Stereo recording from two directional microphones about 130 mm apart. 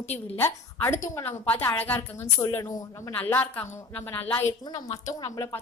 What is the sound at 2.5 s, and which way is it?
Speech, 25° left (ahead or behind).